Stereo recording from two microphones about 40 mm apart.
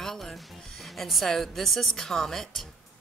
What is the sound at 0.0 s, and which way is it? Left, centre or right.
Music, centre.